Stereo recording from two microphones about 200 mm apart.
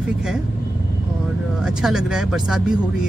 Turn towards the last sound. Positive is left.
turn(degrees=-5)  # may be behind; listen again after turning